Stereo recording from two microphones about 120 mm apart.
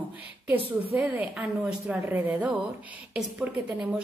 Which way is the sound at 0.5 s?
15° right (ahead or behind).